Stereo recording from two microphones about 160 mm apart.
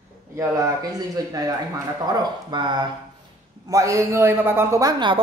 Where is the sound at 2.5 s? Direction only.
30° right (ahead or behind).